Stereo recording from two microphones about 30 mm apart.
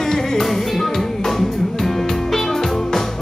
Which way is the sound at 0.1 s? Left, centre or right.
Centre.